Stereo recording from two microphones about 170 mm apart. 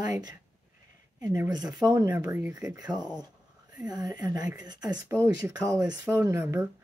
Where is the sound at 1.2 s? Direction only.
15° right (ahead or behind).